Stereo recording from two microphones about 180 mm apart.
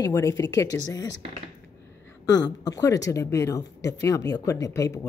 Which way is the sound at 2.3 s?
90° left.